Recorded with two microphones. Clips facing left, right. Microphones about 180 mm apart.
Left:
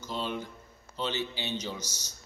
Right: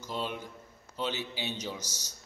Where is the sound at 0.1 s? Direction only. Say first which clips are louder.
Left 1 dB; 5° right (ahead or behind).